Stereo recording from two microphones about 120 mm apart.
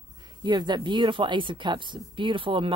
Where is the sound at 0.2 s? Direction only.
35° right (ahead or behind).